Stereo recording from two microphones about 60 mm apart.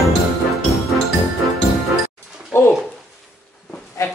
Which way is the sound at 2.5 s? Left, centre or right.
Left.